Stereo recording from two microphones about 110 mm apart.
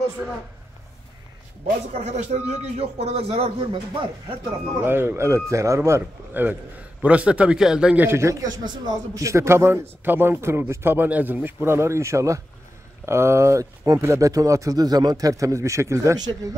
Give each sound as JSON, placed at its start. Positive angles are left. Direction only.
{"t": 0.2, "sound": "a man's voice", "side_deg": -10}
{"t": 2.0, "sound": "speech", "side_deg": -90}
{"t": 3.7, "sound": "speech", "side_deg": -45}
{"t": 4.8, "sound": "a man's voice", "side_deg": -20}
{"t": 8.0, "sound": "speech", "side_deg": -25}
{"t": 8.6, "sound": "speech", "side_deg": -35}